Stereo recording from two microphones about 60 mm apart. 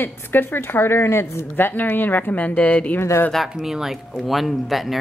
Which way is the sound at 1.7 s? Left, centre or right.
Left.